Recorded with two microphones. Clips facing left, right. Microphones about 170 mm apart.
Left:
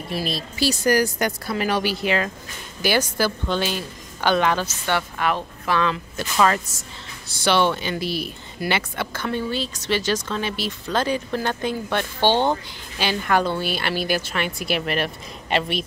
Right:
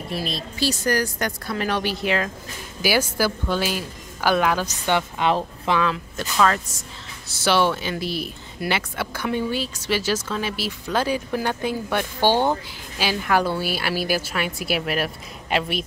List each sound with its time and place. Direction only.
0.1 s speech: 5° left (ahead or behind)
4.8 s speech: 15° right (ahead or behind)
5.8 s speech: 5° right (ahead or behind)